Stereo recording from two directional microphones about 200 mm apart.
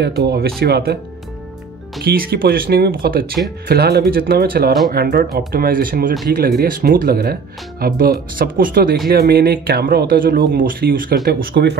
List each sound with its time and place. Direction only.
0.0 s speech: 55° right (ahead or behind)
2.0 s speech: 50° right (ahead or behind)